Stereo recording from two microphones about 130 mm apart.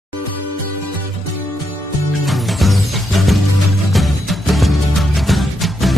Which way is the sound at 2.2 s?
Centre (ahead or behind).